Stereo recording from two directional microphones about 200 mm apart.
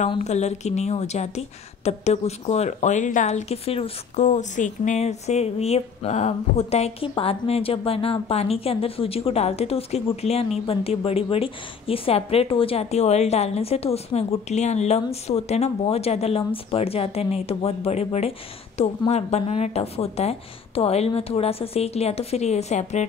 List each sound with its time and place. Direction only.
0.1 s a woman's voice: 35° left (ahead or behind)